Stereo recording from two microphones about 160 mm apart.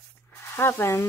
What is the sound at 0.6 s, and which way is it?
Speech, 15° left (ahead or behind).